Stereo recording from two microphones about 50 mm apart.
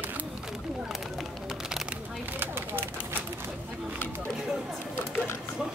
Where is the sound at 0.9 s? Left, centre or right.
Centre.